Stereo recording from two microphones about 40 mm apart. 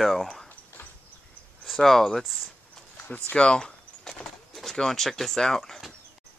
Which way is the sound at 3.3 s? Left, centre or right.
Left.